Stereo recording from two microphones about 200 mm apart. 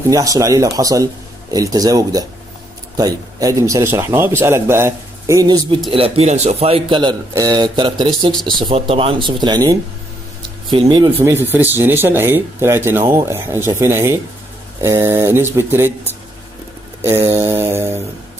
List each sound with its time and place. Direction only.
0.1 s speech: 15° right (ahead or behind)
5.9 s speech: 30° right (ahead or behind)
11.1 s speech: 10° right (ahead or behind)
17.0 s speech: 15° right (ahead or behind)